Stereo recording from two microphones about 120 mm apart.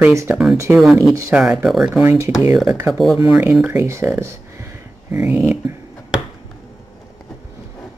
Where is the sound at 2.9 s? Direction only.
Centre (ahead or behind).